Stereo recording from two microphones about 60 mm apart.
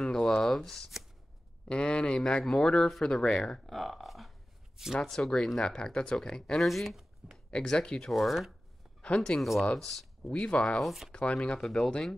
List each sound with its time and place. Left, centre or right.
0.0 s a sound: centre
1.7 s speech: centre
7.5 s speech: centre
8.1 s speech: centre
10.2 s speech: centre
10.8 s speech: centre
11.1 s speech: centre